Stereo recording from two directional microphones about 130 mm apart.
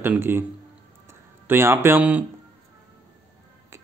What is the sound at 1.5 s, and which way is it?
Speech, 20° right (ahead or behind).